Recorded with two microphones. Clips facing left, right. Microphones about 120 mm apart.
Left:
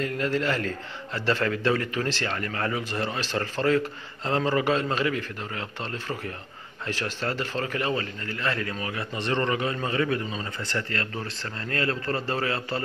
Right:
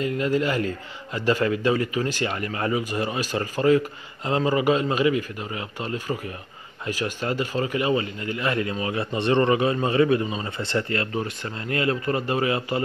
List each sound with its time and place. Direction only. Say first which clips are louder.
0.0 s a man's voice: right 3 dB; 10° right (ahead or behind)